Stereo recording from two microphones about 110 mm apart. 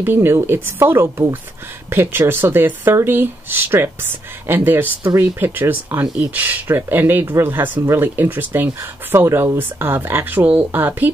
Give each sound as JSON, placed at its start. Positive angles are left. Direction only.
{"t": 0.0, "sound": "speech", "side_deg": -20}